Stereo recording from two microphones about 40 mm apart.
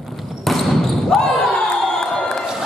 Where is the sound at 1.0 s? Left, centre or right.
Centre.